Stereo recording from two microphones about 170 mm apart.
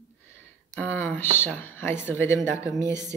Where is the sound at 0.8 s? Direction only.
10° left (ahead or behind).